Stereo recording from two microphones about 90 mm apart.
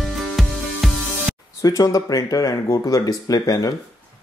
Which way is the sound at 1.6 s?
40° left (ahead or behind).